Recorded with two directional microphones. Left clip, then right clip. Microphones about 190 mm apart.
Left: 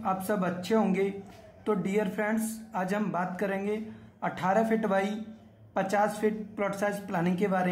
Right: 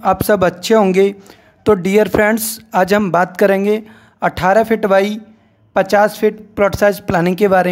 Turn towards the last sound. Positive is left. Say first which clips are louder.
# right 16 dB
turn(degrees=-50)  # may be behind; listen again after turning